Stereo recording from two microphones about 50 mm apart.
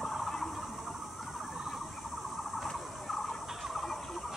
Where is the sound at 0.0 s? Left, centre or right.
Centre.